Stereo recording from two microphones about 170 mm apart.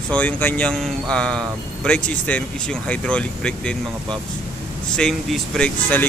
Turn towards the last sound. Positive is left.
turn(degrees=10)  # may be behind; listen again after turning